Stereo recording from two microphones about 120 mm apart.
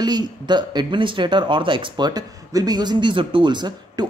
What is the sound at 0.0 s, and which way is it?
Speech, 35° right (ahead or behind).